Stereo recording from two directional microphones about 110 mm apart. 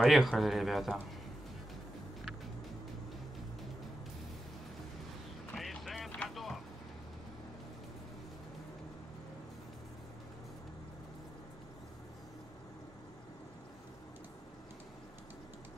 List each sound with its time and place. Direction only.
0.0 s speech: centre (ahead or behind)
5.6 s a sound: centre (ahead or behind)
6.1 s music: centre (ahead or behind)